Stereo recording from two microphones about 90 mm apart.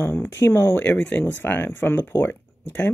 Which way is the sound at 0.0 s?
25° left (ahead or behind).